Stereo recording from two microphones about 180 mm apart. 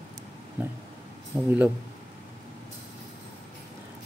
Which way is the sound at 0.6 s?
10° right (ahead or behind).